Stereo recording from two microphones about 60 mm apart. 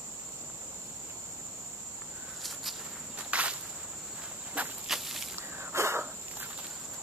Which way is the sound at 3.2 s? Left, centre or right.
Right.